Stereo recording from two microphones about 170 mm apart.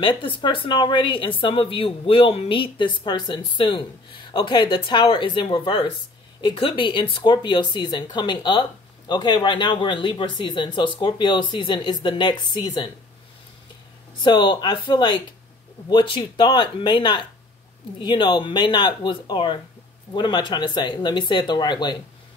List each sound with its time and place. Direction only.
0.0 s speech: 30° left (ahead or behind)
14.2 s speech: 30° left (ahead or behind)